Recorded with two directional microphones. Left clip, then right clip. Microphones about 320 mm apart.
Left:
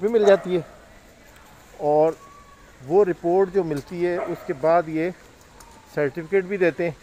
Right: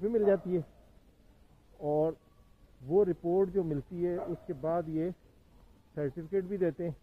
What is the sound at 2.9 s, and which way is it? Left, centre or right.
Speech, centre.